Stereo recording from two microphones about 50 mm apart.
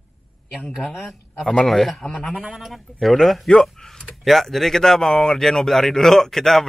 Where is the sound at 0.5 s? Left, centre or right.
Centre.